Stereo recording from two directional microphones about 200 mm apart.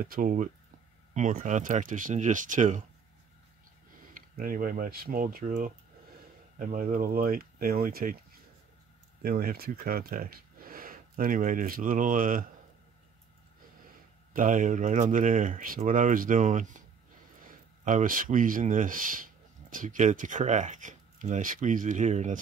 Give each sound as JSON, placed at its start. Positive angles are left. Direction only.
{"t": 0.0, "sound": "speech", "side_deg": -45}
{"t": 4.1, "sound": "speech", "side_deg": -45}
{"t": 9.2, "sound": "speech", "side_deg": -50}
{"t": 14.3, "sound": "speech", "side_deg": -40}